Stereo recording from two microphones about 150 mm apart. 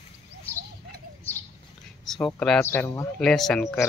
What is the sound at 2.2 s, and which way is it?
Speech, 5° left (ahead or behind).